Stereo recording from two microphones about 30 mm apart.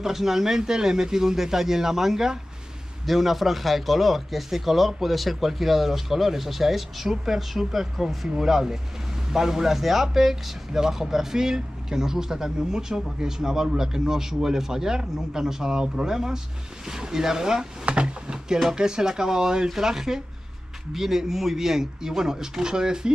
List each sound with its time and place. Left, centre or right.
0.0 s speech: centre
9.8 s speech: centre
17.8 s speech: right